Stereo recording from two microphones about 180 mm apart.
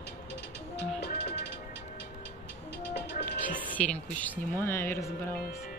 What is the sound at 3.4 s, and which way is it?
Speech, 10° left (ahead or behind).